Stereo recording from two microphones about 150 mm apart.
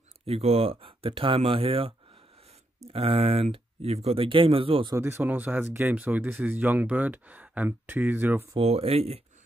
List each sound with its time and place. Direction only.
0.3 s speech: 40° right (ahead or behind)
4.9 s speech: 15° right (ahead or behind)
8.5 s speech: 40° right (ahead or behind)